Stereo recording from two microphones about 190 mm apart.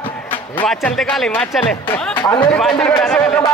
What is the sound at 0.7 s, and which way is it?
Speech, centre (ahead or behind).